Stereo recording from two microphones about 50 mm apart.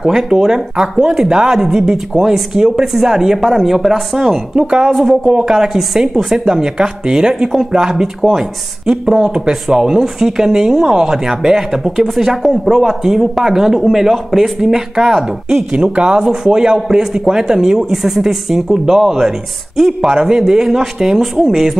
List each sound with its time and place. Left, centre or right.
0.0 s speech: centre
4.6 s speech: centre